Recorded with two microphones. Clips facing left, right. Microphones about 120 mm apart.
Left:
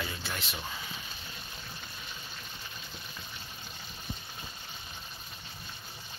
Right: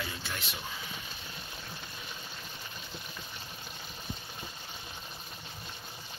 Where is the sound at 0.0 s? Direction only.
Centre (ahead or behind).